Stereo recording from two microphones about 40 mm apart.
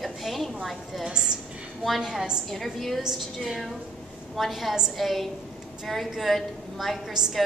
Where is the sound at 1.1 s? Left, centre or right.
Centre.